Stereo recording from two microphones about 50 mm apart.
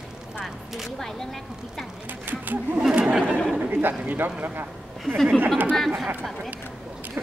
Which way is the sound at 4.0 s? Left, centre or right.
Right.